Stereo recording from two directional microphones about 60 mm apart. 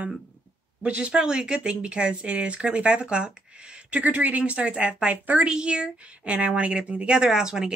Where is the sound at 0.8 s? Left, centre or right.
Centre.